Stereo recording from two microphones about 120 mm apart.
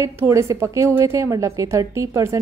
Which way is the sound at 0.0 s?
25° right (ahead or behind).